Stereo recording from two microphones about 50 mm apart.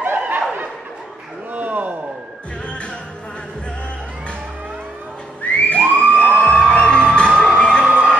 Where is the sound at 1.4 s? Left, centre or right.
Right.